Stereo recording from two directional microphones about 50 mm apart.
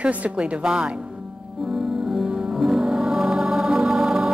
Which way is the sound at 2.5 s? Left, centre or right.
Centre.